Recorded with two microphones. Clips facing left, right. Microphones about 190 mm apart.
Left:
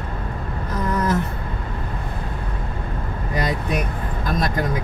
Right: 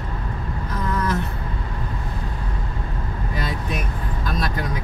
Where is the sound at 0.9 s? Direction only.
45° left (ahead or behind).